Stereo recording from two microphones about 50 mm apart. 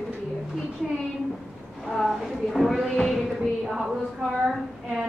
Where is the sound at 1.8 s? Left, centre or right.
Centre.